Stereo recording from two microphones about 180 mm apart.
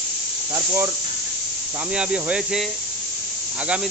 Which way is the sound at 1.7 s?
5° right (ahead or behind).